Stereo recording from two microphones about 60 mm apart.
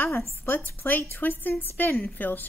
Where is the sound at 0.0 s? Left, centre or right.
Left.